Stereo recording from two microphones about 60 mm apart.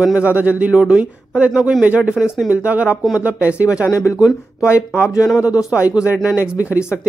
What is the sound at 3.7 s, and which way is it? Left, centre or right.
Speech, left.